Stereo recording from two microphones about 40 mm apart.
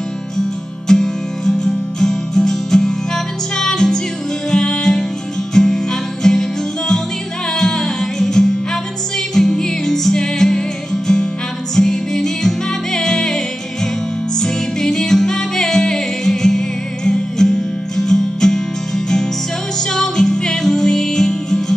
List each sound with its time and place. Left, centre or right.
0.8 s music: centre
7.5 s music: centre
11.7 s music: centre
19.9 s music: centre